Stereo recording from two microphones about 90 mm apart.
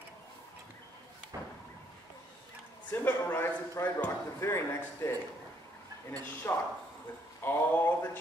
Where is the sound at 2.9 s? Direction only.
20° left (ahead or behind).